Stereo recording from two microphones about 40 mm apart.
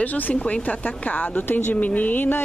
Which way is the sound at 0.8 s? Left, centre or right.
Left.